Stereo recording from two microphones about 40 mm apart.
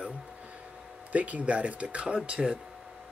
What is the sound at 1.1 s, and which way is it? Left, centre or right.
Speech, right.